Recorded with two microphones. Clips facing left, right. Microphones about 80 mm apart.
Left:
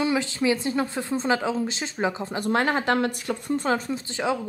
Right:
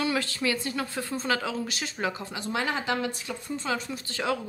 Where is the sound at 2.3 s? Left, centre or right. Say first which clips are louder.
Left 6 dB; left.